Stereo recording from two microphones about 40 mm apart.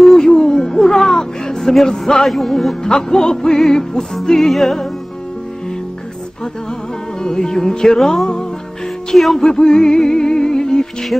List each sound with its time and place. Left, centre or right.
0.0 s music: centre
2.2 s music: centre
2.8 s music: centre
7.2 s music: centre